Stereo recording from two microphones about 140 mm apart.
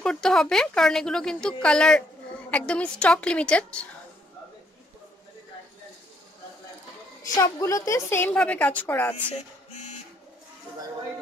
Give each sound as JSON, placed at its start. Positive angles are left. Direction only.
{"t": 0.0, "sound": "a woman's voice", "side_deg": 5}
{"t": 7.3, "sound": "a woman's voice", "side_deg": 25}